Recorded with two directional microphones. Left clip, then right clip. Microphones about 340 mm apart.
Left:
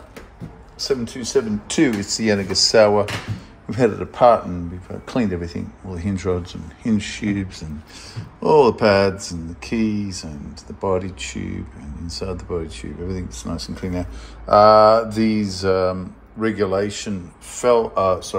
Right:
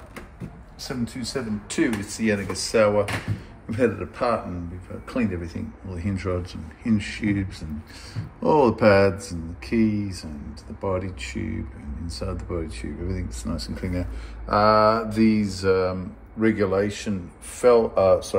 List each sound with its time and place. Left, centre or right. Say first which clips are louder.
1.3 s speech: left 11 dB; centre
4.0 s a man's voice: left 11 dB; left
5.0 s speech: left 5 dB; centre